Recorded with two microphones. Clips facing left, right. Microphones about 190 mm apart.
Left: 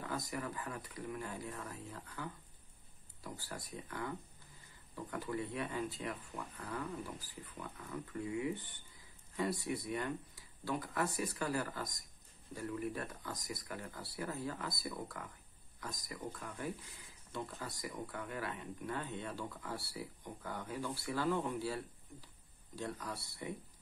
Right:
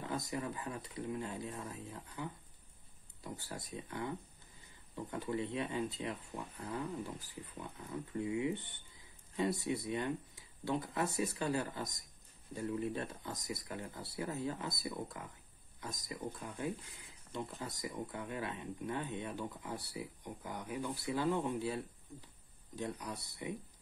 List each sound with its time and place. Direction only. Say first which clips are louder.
0.0 s speech: right 2 dB; 25° right (ahead or behind)